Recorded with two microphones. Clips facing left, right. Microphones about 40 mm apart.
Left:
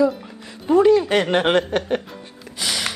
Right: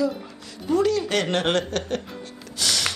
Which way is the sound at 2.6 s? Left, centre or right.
Centre.